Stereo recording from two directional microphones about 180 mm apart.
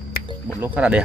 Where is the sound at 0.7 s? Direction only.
5° right (ahead or behind).